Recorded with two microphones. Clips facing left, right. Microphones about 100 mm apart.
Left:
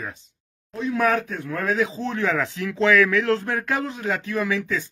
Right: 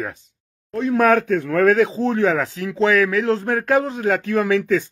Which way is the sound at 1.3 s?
75° right (ahead or behind).